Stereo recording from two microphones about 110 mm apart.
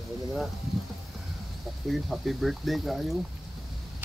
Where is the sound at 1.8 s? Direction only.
Centre (ahead or behind).